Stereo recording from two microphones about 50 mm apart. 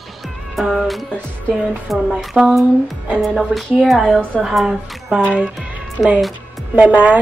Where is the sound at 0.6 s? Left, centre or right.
Centre.